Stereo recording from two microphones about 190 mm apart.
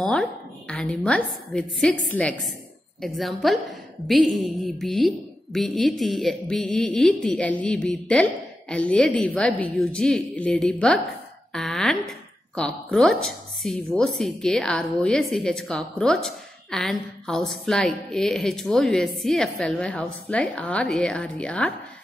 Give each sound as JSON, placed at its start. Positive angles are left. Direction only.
{"t": 0.0, "sound": "a woman's voice", "side_deg": 5}
{"t": 11.5, "sound": "a sound", "side_deg": 0}
{"t": 12.5, "sound": "a woman's voice", "side_deg": 5}